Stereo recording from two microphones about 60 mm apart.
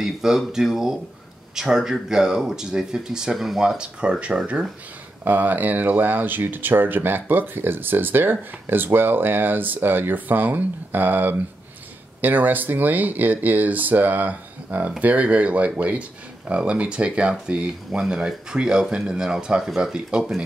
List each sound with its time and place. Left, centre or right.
0.0 s speech: centre
5.2 s speech: right